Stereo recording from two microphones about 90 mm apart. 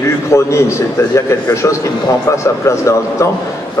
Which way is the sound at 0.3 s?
30° left (ahead or behind).